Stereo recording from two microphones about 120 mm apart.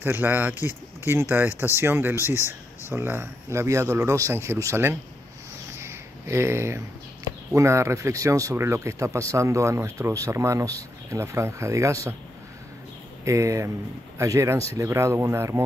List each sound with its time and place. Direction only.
0.0 s speech: 15° right (ahead or behind)
5.8 s a sound: 20° right (ahead or behind)
7.2 s speech: 25° right (ahead or behind)
13.2 s speech: 25° right (ahead or behind)